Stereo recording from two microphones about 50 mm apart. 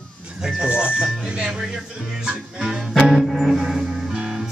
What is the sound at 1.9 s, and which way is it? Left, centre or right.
Music, centre.